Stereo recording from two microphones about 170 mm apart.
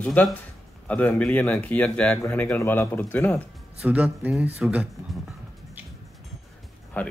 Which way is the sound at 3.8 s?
10° right (ahead or behind).